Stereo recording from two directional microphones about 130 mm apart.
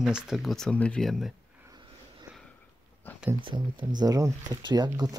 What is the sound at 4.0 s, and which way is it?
Speech, 30° right (ahead or behind).